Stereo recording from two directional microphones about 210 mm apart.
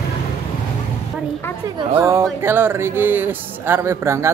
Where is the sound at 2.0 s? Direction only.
15° right (ahead or behind).